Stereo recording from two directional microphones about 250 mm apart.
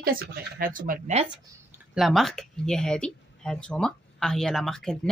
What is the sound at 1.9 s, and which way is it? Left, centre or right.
Speech, centre.